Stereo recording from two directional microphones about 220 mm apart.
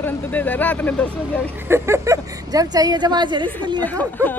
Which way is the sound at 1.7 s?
15° right (ahead or behind).